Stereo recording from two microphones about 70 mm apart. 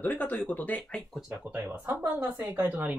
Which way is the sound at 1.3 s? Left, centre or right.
Right.